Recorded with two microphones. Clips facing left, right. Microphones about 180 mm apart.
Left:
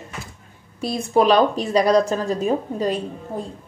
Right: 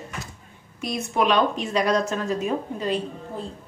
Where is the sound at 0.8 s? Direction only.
35° left (ahead or behind).